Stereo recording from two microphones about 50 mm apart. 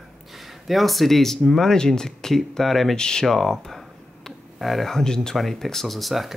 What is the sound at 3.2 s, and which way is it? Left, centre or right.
Speech, centre.